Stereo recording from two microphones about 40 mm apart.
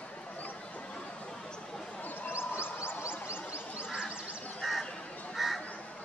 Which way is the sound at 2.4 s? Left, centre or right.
Left.